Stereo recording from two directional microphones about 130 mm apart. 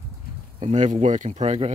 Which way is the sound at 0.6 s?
65° right (ahead or behind).